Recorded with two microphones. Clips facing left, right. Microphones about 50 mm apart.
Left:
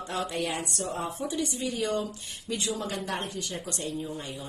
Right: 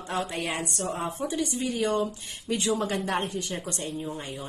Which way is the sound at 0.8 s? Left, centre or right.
Right.